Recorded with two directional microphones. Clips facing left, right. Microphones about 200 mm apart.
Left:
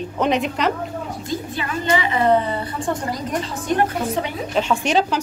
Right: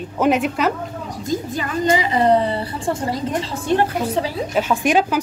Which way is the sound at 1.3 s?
40° right (ahead or behind).